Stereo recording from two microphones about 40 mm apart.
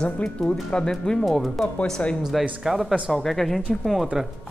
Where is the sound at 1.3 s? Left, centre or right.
Centre.